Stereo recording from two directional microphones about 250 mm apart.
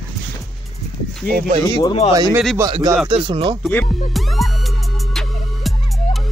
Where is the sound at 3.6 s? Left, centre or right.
Centre.